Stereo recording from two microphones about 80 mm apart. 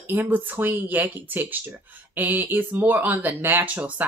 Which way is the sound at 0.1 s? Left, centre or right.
Right.